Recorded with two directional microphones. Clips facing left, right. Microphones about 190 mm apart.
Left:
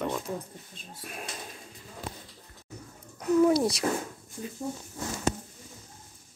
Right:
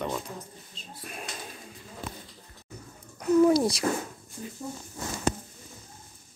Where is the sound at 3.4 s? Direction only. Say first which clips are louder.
Right 2 dB; centre (ahead or behind).